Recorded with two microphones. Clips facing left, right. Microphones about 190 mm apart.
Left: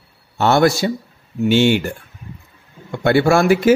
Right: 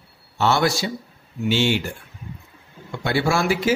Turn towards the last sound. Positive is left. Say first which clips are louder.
# left 7 dB
turn(degrees=55)  # may be behind; listen again after turning